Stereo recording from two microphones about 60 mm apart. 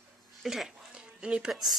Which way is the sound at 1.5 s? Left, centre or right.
Centre.